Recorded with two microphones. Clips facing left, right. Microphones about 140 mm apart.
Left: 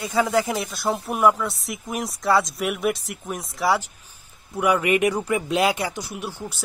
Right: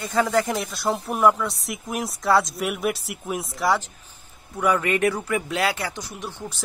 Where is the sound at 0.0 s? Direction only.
10° left (ahead or behind).